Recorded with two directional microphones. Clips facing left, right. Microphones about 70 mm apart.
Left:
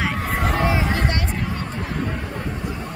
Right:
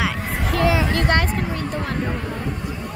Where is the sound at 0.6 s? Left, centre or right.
Right.